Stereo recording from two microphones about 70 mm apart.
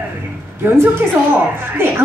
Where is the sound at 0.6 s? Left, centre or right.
Right.